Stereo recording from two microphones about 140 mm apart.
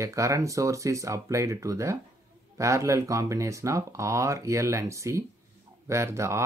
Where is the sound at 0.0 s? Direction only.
20° right (ahead or behind).